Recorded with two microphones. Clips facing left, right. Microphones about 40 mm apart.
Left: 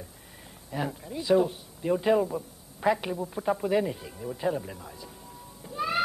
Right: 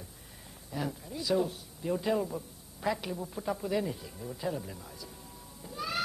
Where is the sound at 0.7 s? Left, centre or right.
Left.